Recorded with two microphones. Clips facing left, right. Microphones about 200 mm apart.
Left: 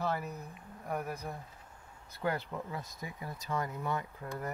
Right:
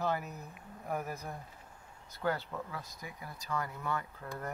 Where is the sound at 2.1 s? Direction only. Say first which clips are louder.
Even; 15° left (ahead or behind).